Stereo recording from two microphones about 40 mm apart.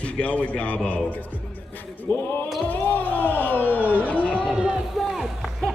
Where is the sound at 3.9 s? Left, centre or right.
Left.